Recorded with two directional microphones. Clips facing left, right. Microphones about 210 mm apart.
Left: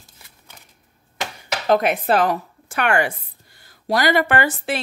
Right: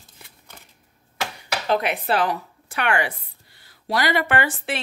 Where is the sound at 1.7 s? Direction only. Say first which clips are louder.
Left 5 dB; 45° left (ahead or behind).